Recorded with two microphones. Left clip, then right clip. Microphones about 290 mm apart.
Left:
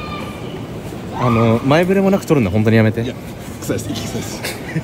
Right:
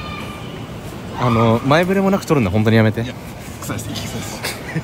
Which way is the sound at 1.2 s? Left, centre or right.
Centre.